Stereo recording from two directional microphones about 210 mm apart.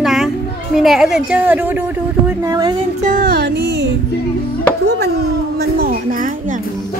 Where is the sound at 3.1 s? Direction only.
40° right (ahead or behind).